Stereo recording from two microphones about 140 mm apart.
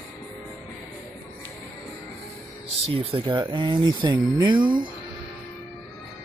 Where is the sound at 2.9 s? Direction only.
40° right (ahead or behind).